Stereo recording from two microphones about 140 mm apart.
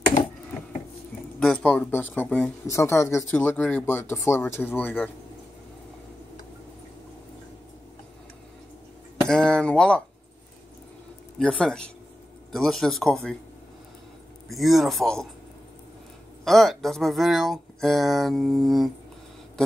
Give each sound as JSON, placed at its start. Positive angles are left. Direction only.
{"t": 1.4, "sound": "speech", "side_deg": 5}
{"t": 2.7, "sound": "speech", "side_deg": 20}
{"t": 9.3, "sound": "chink", "side_deg": 5}
{"t": 11.3, "sound": "speech", "side_deg": 5}
{"t": 14.5, "sound": "speech", "side_deg": 0}
{"t": 16.4, "sound": "speech", "side_deg": 0}